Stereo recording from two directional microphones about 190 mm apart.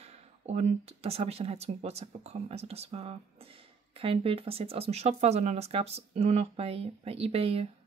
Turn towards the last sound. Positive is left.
turn(degrees=-30)  # may be behind; listen again after turning